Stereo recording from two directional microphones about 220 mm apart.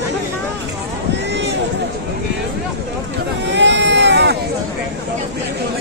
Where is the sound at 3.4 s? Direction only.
55° right (ahead or behind).